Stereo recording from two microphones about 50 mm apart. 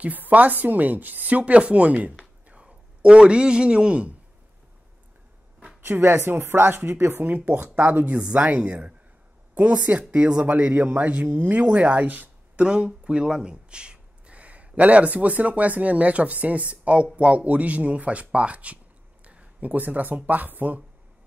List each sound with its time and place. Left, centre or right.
0.0 s a man's voice: right
5.8 s speech: right
7.0 s speech: right
7.2 s speech: right
12.6 s speech: centre; by 20.8 s right